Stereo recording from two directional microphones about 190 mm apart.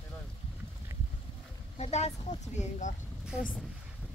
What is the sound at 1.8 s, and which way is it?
A woman's voice, 35° left (ahead or behind).